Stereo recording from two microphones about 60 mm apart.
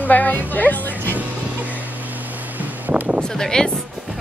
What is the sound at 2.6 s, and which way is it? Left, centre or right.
Vehicle, right.